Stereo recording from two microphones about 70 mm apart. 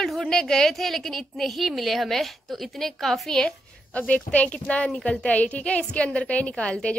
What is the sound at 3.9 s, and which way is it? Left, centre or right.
A woman's voice, centre.